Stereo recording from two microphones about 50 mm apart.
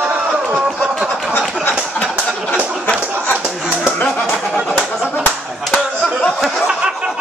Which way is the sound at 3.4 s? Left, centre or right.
Centre.